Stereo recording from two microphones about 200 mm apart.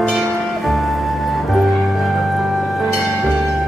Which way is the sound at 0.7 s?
Centre (ahead or behind).